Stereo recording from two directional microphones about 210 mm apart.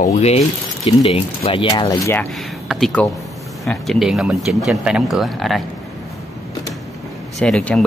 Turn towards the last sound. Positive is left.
turn(degrees=5)  # may be behind; listen again after turning